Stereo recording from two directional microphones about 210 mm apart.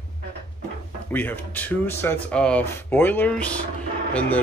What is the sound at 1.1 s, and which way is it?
Speech, 10° left (ahead or behind).